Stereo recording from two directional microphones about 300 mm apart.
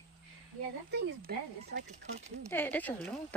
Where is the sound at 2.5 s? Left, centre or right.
Centre.